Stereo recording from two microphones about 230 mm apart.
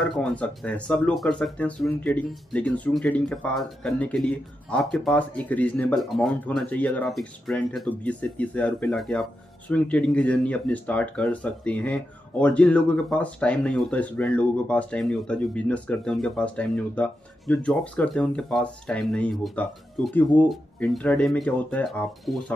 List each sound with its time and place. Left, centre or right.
0.0 s speech: centre